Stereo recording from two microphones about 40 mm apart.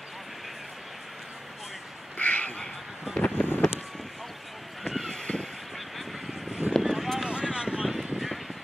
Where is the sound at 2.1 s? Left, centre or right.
Left.